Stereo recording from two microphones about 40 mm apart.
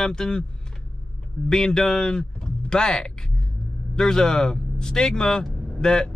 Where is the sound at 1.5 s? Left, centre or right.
Centre.